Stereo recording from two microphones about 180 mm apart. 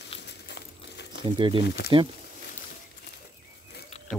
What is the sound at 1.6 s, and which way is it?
Speech, 60° left (ahead or behind).